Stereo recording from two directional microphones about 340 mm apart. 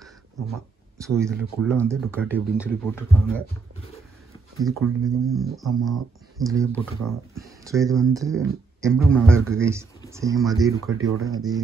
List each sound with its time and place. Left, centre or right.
0.9 s speech: centre
2.1 s speech: centre
4.8 s speech: centre
8.9 s speech: centre
10.9 s speech: right
11.1 s speech: centre